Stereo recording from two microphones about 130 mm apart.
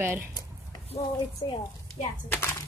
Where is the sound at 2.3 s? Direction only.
20° left (ahead or behind).